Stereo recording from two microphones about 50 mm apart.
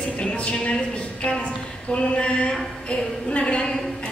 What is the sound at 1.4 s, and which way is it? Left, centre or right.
A woman's voice, left.